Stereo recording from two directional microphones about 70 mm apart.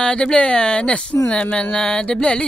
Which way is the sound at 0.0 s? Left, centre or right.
Centre.